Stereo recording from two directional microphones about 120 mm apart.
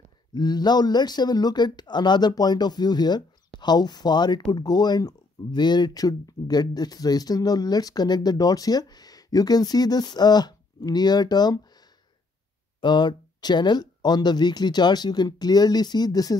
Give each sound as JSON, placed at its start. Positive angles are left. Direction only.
{"t": 0.3, "sound": "speech", "side_deg": 35}
{"t": 12.8, "sound": "speech", "side_deg": 40}